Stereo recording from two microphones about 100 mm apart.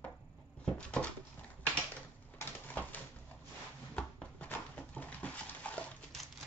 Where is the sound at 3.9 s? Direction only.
15° left (ahead or behind).